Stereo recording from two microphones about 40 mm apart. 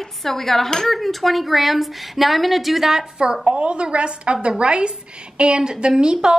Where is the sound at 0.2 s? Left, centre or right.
Centre.